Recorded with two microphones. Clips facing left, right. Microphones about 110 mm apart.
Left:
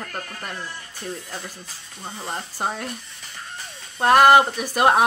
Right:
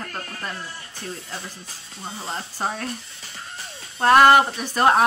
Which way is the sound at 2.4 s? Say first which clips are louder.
Left 1 dB; 15° left (ahead or behind).